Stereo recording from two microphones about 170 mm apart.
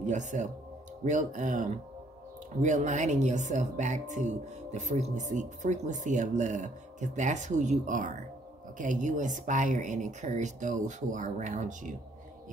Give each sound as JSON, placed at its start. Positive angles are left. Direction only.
{"t": 0.0, "sound": "speech", "side_deg": -45}